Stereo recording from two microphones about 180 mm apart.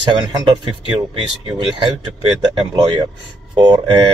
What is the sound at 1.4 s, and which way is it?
Speech, 30° right (ahead or behind).